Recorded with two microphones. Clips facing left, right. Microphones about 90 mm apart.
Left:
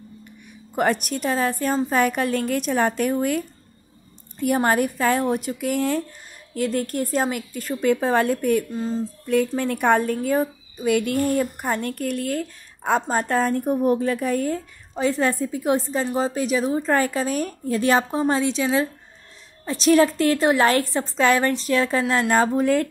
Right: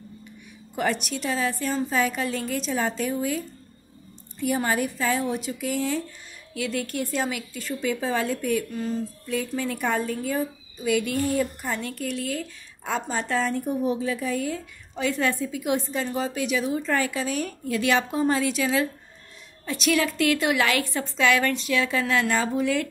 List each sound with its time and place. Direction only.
0.7 s a woman's voice: 50° left (ahead or behind)
6.5 s a woman's voice: 45° left (ahead or behind)
8.7 s a woman's voice: 30° left (ahead or behind)
9.2 s a woman's voice: 55° left (ahead or behind); by 18.2 s 35° left (ahead or behind)
18.2 s a woman's voice: 25° left (ahead or behind); by 22.0 s 40° left (ahead or behind)
22.0 s a woman's voice: 25° left (ahead or behind)
22.3 s a woman's voice: 45° left (ahead or behind)